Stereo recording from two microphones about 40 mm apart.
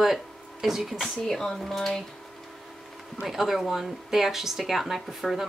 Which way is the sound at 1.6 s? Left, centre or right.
Centre.